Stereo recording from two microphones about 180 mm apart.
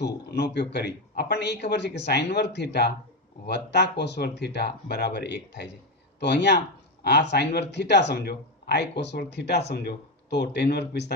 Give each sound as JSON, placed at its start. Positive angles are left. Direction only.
{"t": 0.0, "sound": "speech", "side_deg": 65}